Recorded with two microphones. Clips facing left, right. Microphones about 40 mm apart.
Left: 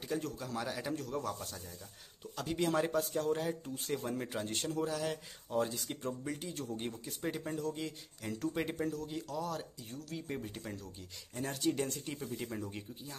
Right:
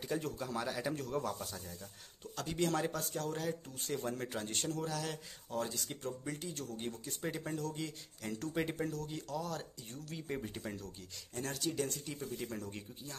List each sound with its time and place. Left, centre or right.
0.0 s speech: centre
11.3 s speech: centre
11.6 s speech: left
12.2 s speech: centre